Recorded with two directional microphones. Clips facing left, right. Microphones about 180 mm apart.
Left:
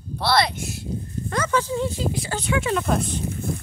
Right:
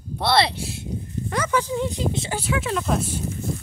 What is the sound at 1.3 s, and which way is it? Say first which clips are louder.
Speech: even; 15° right (ahead or behind).